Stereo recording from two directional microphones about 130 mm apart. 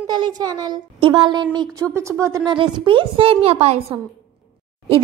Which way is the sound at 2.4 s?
40° right (ahead or behind).